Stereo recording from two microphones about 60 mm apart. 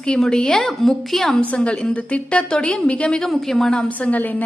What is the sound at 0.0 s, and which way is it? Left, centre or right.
A woman's voice, centre.